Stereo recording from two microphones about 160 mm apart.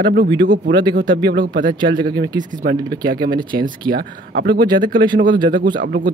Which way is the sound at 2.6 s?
60° right (ahead or behind).